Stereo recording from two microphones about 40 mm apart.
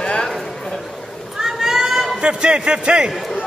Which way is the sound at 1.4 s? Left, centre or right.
Centre.